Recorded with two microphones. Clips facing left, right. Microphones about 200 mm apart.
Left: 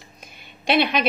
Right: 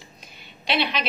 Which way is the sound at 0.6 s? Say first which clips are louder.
Left 6 dB; 50° left (ahead or behind).